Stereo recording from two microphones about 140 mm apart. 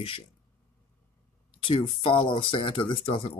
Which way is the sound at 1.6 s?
40° left (ahead or behind).